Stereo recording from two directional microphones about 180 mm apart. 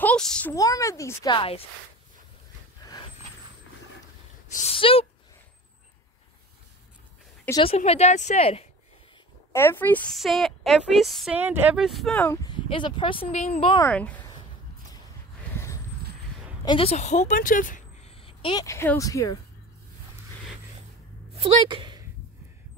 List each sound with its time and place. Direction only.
0.0 s speech: 5° left (ahead or behind)
0.6 s speech: 20° left (ahead or behind)
4.6 s speech: 35° left (ahead or behind)
7.5 s speech: 35° left (ahead or behind)
9.5 s a woman's voice: 15° left (ahead or behind)
11.3 s a woman's voice: 10° right (ahead or behind); by 12.4 s 5° left (ahead or behind)
12.4 s speech: 25° left (ahead or behind)
13.8 s speech: 10° left (ahead or behind)
15.5 s vehicle: 15° left (ahead or behind)
16.6 s a woman's voice: 30° left (ahead or behind); by 18.1 s 45° left (ahead or behind)
18.2 s speech: 25° left (ahead or behind)
21.4 s a woman's voice: 25° right (ahead or behind)